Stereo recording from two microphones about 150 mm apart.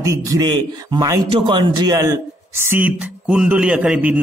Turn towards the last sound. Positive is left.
turn(degrees=-10)  # may be behind; listen again after turning